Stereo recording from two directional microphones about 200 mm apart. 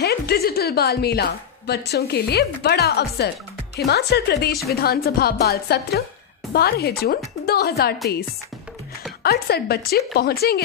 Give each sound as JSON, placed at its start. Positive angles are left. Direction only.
{"t": 0.0, "sound": "a woman's voice", "side_deg": 55}
{"t": 9.2, "sound": "a woman's voice", "side_deg": 50}